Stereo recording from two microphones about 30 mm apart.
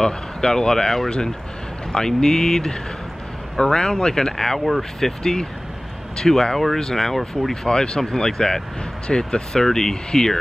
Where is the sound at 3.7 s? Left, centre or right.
Left.